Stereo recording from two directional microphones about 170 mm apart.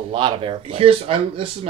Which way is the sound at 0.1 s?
30° right (ahead or behind).